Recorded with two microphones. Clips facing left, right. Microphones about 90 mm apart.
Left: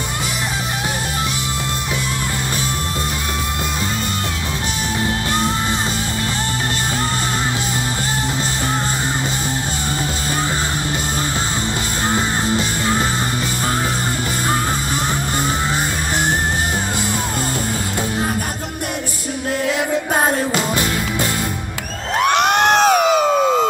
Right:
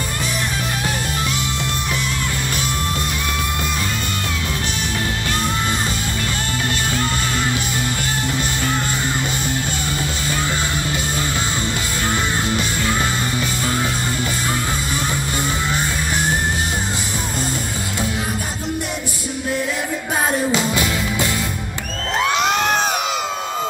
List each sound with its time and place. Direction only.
20.2 s music: 40° left (ahead or behind)
22.2 s music: 60° left (ahead or behind); by 22.9 s 75° left (ahead or behind)
22.9 s a sound: 50° left (ahead or behind)